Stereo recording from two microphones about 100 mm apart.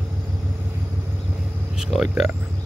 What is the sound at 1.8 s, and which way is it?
Speech, 5° right (ahead or behind).